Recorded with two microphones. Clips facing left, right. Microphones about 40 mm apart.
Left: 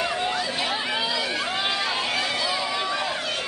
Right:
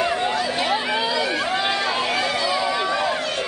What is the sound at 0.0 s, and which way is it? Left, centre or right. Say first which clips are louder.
Chatter: right 4 dB; centre.